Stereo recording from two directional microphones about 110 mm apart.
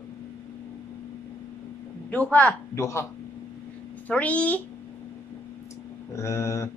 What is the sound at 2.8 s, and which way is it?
Speech, 25° left (ahead or behind).